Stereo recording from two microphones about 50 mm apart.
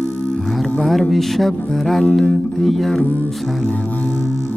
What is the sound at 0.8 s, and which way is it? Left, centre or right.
Speech, centre.